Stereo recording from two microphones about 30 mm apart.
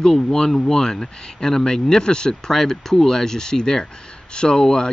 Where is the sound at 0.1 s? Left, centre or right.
Centre.